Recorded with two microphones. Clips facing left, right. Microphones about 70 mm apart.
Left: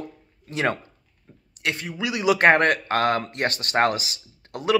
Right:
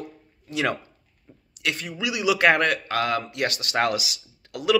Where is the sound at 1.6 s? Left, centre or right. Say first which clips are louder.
Left 1 dB; left.